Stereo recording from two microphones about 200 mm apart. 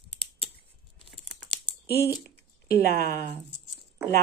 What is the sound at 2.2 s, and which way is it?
Speech, 55° left (ahead or behind).